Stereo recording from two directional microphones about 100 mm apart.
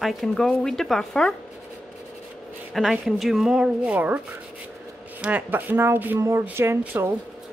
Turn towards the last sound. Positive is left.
turn(degrees=-20)  # may be behind; listen again after turning